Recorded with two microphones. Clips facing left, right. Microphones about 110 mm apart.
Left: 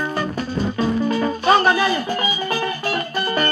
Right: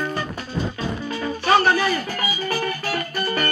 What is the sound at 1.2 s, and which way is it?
Music, 30° left (ahead or behind).